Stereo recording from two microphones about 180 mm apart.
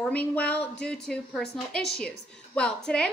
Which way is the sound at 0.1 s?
10° left (ahead or behind).